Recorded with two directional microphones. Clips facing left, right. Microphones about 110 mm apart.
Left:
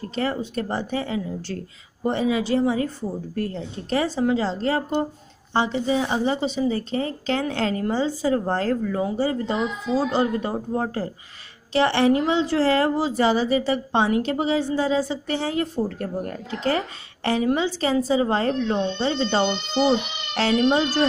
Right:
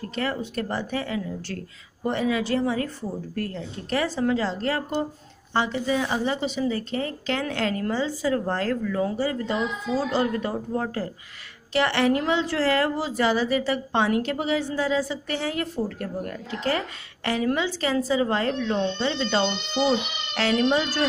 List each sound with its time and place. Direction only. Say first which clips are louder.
0.1 s a woman's voice: left 3 dB; 25° left (ahead or behind)